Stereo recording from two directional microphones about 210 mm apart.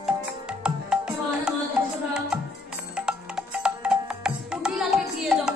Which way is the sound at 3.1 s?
5° right (ahead or behind).